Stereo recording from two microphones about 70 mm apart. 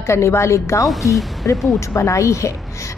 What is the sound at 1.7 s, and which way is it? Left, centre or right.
Speech, left.